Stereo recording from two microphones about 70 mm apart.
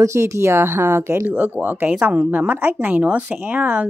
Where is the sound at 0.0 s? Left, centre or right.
Right.